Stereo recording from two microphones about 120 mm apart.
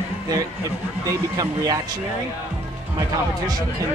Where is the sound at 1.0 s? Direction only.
30° right (ahead or behind).